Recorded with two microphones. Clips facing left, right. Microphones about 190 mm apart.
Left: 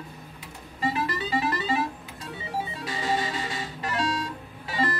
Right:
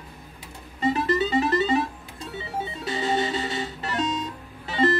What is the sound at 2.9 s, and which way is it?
Music, 25° right (ahead or behind).